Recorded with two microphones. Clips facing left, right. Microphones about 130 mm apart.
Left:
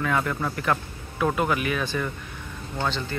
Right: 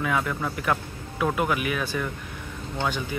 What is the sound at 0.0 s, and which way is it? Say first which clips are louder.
Speech: left 1 dB; 5° right (ahead or behind).